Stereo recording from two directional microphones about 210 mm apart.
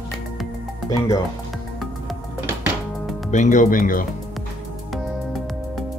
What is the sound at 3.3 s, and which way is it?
Speech, 35° left (ahead or behind).